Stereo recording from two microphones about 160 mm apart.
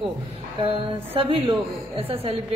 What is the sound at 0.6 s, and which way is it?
Speech, 35° right (ahead or behind).